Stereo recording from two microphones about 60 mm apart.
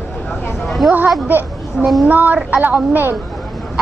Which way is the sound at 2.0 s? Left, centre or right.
Right.